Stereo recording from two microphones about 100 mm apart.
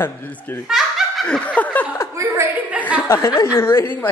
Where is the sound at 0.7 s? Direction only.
5° right (ahead or behind).